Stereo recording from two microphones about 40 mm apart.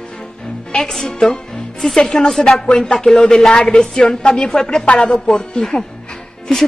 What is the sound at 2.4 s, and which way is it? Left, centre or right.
Speech, left.